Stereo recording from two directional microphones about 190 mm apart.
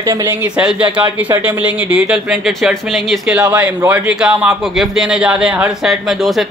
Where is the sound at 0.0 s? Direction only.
20° right (ahead or behind).